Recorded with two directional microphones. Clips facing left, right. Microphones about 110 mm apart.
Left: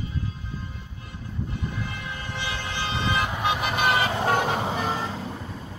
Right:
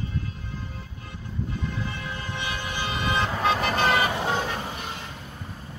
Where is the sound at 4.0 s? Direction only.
25° left (ahead or behind).